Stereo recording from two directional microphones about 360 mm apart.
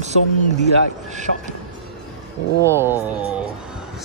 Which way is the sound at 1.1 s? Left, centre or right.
Centre.